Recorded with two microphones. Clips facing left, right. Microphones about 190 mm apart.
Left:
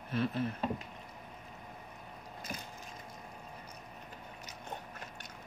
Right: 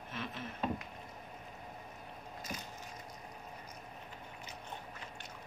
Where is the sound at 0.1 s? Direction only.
35° left (ahead or behind).